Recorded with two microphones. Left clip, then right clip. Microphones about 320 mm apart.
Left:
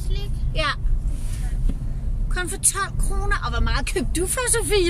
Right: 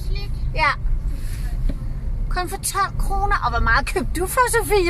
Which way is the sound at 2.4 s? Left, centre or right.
Centre.